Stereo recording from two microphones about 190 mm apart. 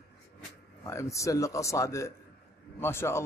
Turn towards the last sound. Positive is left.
turn(degrees=15)  # may be behind; listen again after turning